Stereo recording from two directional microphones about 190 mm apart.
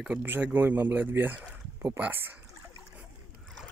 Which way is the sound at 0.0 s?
5° right (ahead or behind).